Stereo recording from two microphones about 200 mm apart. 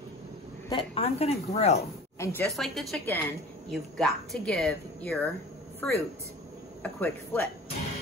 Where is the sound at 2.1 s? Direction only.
10° left (ahead or behind).